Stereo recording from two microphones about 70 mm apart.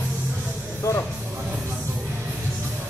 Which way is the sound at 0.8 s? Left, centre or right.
Left.